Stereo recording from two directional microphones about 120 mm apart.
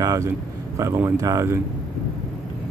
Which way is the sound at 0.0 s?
30° right (ahead or behind).